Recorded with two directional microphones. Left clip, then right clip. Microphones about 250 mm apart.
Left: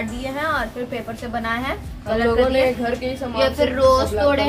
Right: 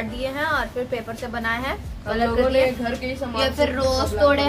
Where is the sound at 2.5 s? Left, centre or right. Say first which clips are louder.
Left 1 dB; centre.